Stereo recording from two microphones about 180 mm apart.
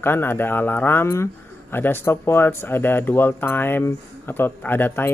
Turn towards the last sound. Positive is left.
turn(degrees=10)  # may be behind; listen again after turning